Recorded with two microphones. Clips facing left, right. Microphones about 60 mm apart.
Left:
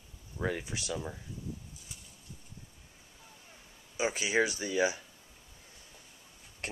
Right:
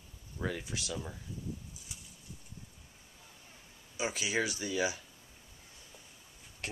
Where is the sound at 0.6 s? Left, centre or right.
Centre.